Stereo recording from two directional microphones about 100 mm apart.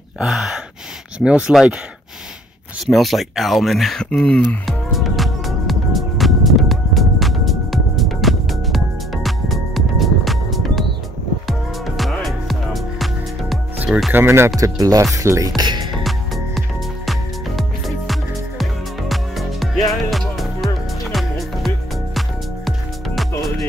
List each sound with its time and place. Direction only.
0.2 s speech: 5° right (ahead or behind)
2.9 s speech: centre (ahead or behind)
4.6 s music: centre (ahead or behind)
13.8 s speech: centre (ahead or behind)
14.1 s speech: 25° right (ahead or behind)
14.6 s speech: 35° right (ahead or behind)
16.0 s music: centre (ahead or behind)